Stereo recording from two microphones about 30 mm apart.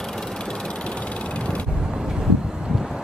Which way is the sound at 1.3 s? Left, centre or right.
Left.